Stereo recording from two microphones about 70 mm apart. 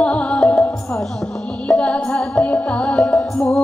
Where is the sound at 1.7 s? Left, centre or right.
Centre.